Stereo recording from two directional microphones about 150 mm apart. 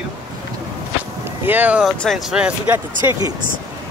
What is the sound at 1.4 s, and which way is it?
Speech, 10° right (ahead or behind).